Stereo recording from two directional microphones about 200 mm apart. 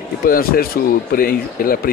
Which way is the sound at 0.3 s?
50° left (ahead or behind).